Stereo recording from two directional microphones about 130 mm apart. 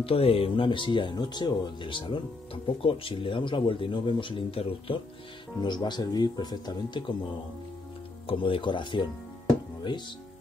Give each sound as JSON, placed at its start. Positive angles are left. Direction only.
{"t": 0.0, "sound": "speech", "side_deg": 45}
{"t": 5.6, "sound": "speech", "side_deg": 35}
{"t": 8.3, "sound": "speech", "side_deg": 40}